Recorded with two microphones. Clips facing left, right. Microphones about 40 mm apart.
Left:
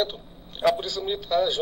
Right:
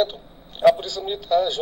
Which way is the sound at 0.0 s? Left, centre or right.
Centre.